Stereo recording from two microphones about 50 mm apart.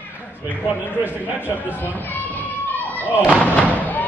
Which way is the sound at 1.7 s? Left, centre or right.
Left.